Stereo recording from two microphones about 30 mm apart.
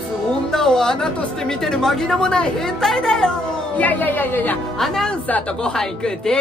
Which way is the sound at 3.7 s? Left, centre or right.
Left.